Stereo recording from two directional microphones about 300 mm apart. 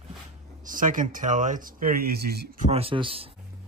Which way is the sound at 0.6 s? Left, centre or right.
Right.